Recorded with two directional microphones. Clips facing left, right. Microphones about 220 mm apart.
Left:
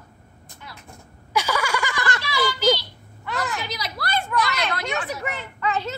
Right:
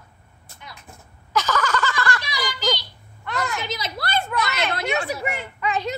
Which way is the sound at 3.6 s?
25° right (ahead or behind).